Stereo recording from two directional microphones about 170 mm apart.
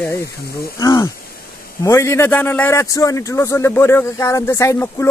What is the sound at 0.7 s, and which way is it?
A man's voice, 20° left (ahead or behind).